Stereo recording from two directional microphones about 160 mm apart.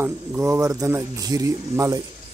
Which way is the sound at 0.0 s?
15° right (ahead or behind).